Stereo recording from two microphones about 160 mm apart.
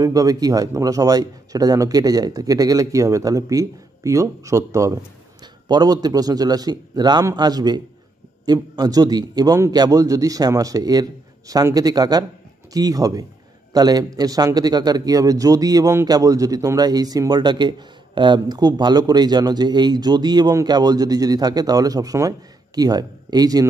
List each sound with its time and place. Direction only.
0.0 s a man's voice: 20° right (ahead or behind)